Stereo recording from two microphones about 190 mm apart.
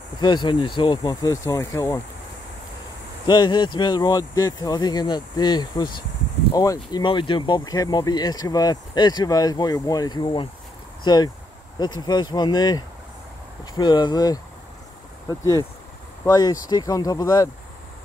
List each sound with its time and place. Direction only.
0.2 s speech: 25° left (ahead or behind)
3.3 s speech: 20° left (ahead or behind)
12.0 s speech: 20° left (ahead or behind)